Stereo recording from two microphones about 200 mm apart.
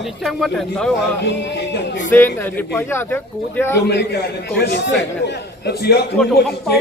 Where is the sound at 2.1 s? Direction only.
10° left (ahead or behind).